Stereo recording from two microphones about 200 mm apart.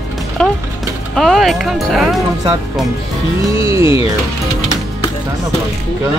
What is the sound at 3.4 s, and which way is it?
Speech, 15° right (ahead or behind).